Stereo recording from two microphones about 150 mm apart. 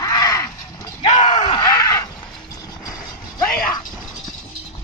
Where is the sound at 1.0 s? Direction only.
50° left (ahead or behind).